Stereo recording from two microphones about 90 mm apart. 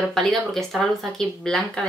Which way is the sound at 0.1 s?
Centre (ahead or behind).